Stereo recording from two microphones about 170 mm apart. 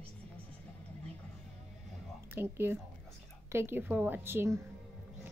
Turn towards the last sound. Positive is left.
turn(degrees=-15)  # may be behind; listen again after turning